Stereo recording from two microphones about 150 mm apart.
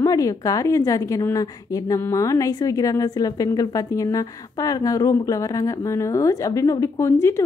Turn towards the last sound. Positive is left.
turn(degrees=15)  # may be behind; listen again after turning